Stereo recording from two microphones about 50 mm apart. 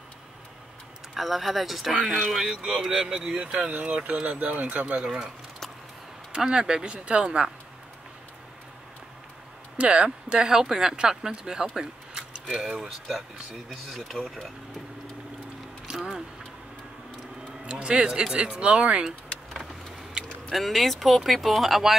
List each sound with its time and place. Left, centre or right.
1.1 s speech: centre; by 5.1 s right
6.3 s speech: centre
9.8 s speech: right
11.7 s a sound: centre
13.7 s speech: centre
17.6 s speech: centre
19.5 s vehicle: centre
20.5 s speech: centre